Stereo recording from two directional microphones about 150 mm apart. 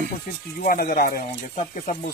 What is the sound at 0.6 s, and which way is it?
Speech, 85° left.